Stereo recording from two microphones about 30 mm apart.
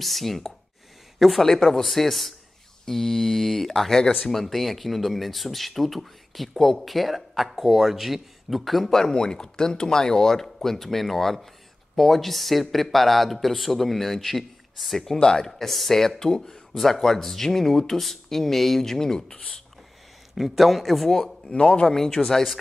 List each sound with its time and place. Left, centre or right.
0.0 s a man's voice: centre
9.1 s a man's voice: left
15.1 s speech: left
15.6 s speech: centre
16.2 s speech: centre
16.7 s speech: centre
20.3 s a man's voice: centre
21.1 s speech: centre
21.5 s a man's voice: left
21.8 s speech: centre